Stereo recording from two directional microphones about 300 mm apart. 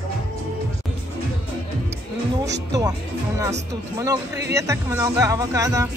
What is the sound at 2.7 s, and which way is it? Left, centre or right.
Speech, centre.